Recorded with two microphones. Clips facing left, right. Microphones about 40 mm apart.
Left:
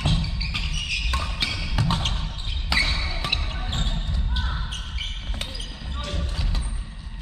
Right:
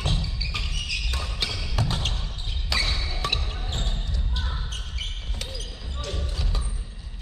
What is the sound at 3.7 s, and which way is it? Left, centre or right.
Basketball bounce, left.